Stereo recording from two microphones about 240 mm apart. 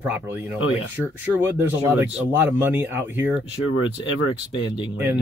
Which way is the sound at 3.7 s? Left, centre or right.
Left.